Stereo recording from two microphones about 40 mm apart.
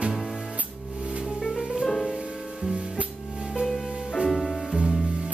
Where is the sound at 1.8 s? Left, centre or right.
Centre.